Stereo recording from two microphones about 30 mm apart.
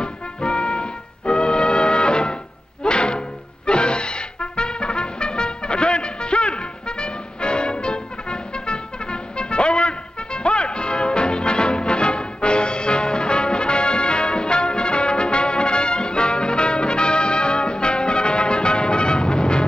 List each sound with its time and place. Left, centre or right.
0.0 s music: left
3.6 s trumpet: left